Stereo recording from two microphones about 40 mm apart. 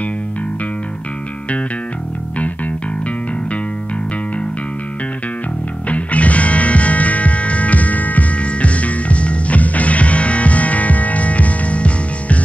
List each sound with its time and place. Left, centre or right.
2.3 s music: left
5.9 s music: left